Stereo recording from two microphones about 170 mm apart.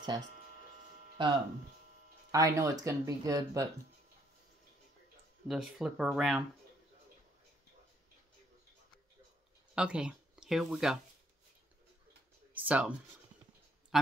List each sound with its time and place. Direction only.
1.2 s speech: 25° right (ahead or behind)
5.5 s speech: 5° right (ahead or behind)
9.8 s speech: 5° right (ahead or behind)
12.5 s speech: 10° right (ahead or behind)